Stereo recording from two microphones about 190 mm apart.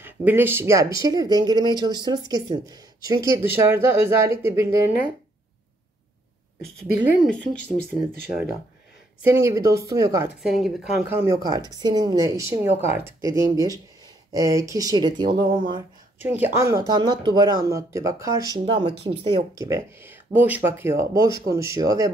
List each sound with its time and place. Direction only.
0.0 s speech: 10° right (ahead or behind)
7.2 s speech: 5° left (ahead or behind)
9.2 s speech: 15° right (ahead or behind)
10.4 s speech: centre (ahead or behind)
11.1 s speech: 15° right (ahead or behind)
15.3 s speech: 50° right (ahead or behind)
16.2 s speech: 10° right (ahead or behind)
18.9 s speech: 25° right (ahead or behind)